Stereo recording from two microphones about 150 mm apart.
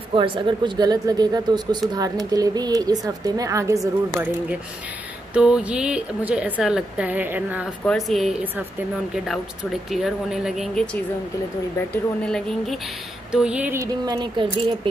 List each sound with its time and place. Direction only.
0.1 s speech: 35° right (ahead or behind)
3.8 s speech: 10° right (ahead or behind)
7.8 s speech: centre (ahead or behind)
9.8 s speech: centre (ahead or behind)
11.9 s speech: 5° left (ahead or behind); by 13.8 s 10° right (ahead or behind)
14.0 s speech: 30° right (ahead or behind)